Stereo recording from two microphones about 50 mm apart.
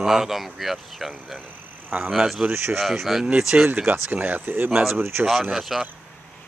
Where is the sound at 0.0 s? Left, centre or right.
Centre.